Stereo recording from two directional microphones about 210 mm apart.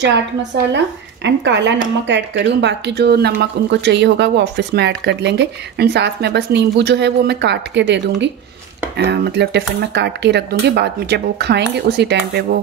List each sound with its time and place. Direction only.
0.7 s speech: 55° right (ahead or behind)